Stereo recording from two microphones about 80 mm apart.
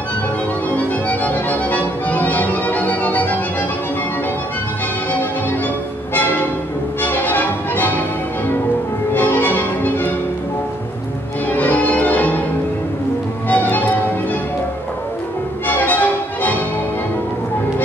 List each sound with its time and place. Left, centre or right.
0.7 s music: centre
7.0 s music: left
9.1 s music: left
11.4 s music: left
13.5 s music: left
15.6 s music: left